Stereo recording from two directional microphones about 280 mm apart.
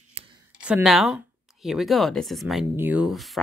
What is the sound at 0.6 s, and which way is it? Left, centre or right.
Speech, centre.